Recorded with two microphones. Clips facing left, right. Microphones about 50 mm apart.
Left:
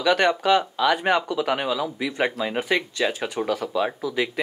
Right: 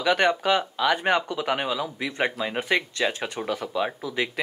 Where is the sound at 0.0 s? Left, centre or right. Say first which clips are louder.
Left 2 dB; centre.